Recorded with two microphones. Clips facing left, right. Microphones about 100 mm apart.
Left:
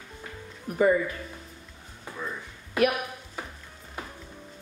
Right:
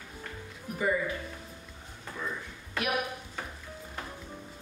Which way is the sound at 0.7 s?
45° left (ahead or behind).